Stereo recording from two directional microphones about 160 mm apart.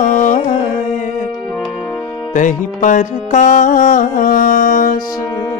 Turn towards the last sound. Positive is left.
turn(degrees=60)  # may be behind; listen again after turning